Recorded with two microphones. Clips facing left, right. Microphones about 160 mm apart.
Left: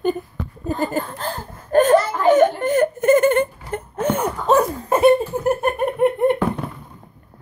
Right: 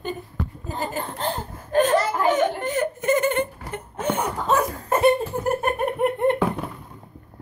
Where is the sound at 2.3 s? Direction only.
50° left (ahead or behind).